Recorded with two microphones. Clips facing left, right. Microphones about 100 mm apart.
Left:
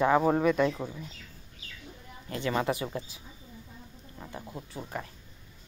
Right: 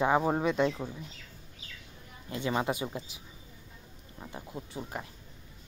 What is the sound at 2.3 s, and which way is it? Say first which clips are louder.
Speech: left 1 dB; 20° right (ahead or behind).